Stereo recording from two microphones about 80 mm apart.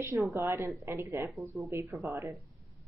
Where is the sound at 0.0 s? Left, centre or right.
Right.